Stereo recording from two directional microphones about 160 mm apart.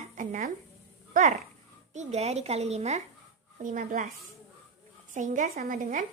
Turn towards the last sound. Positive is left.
turn(degrees=-55)  # may be behind; listen again after turning